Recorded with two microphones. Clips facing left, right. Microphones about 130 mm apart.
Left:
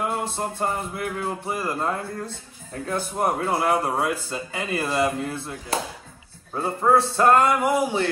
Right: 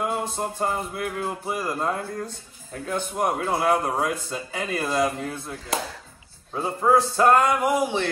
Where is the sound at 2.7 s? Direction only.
35° left (ahead or behind).